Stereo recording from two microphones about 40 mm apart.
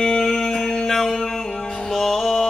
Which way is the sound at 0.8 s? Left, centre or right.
Centre.